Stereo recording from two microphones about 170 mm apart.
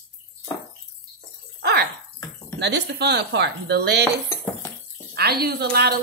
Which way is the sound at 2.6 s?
85° right.